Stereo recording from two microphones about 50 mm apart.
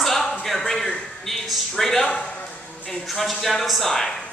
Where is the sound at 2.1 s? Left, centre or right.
Left.